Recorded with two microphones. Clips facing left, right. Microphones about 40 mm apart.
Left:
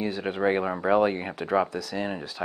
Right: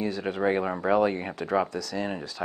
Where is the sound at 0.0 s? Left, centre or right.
Left.